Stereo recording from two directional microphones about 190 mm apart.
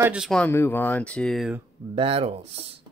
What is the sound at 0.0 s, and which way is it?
Speech, 5° right (ahead or behind).